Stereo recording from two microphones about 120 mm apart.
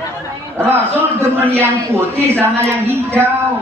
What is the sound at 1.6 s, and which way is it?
A woman's voice, 20° right (ahead or behind).